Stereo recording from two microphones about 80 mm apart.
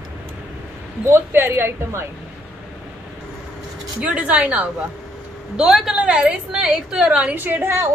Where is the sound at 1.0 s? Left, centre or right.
Right.